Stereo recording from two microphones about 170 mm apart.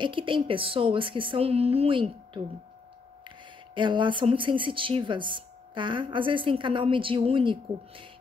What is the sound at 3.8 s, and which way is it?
A woman's voice, 30° right (ahead or behind).